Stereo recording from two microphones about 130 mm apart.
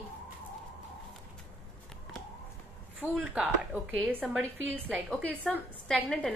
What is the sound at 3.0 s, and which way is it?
Speech, 10° right (ahead or behind).